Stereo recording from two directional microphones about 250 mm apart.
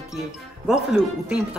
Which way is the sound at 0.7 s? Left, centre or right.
Centre.